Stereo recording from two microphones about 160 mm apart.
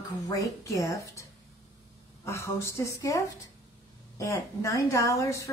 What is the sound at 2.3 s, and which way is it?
A woman's voice, 15° left (ahead or behind).